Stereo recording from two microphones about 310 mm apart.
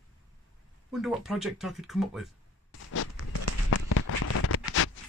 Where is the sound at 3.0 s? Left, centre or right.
Left.